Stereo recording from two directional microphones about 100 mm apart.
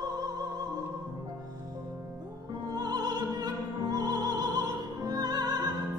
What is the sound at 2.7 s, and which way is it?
Music, 40° right (ahead or behind).